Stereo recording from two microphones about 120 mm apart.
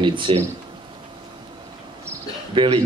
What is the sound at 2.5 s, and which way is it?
Speech, 45° right (ahead or behind).